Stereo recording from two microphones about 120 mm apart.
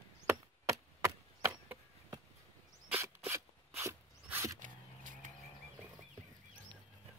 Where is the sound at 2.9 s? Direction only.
20° right (ahead or behind).